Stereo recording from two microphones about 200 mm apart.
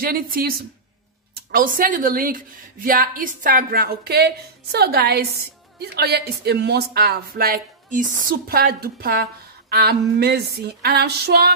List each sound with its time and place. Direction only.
0.0 s a woman's voice: 45° right (ahead or behind)